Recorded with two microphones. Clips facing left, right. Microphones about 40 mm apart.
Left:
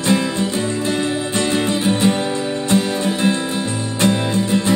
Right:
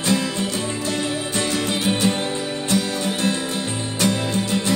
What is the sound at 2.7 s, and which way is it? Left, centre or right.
Music, left.